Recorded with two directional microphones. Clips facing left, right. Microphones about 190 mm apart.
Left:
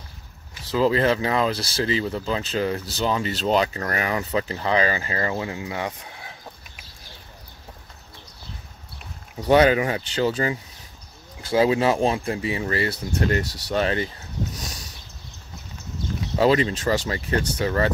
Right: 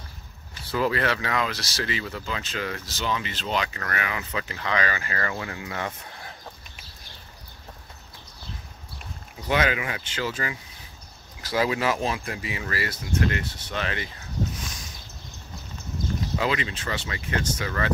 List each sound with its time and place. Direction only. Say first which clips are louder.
0.7 s speech: left 5 dB; 25° left (ahead or behind); by 6.3 s 10° left (ahead or behind)
9.5 s speech: left 8 dB; 35° left (ahead or behind)
13.3 s speech: left 7 dB; 40° left (ahead or behind)
16.3 s speech: left 10 dB; 35° left (ahead or behind)